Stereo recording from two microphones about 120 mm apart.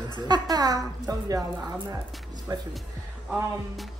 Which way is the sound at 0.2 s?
35° right (ahead or behind).